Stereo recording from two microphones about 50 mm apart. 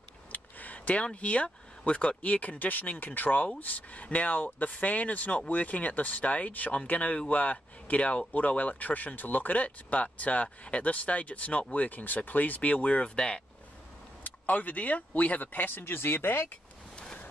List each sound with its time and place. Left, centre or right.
0.3 s speech: left
13.1 s speech: centre
14.2 s speech: left
16.9 s waves: left